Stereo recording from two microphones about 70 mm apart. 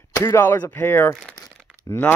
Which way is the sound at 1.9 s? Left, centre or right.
Left.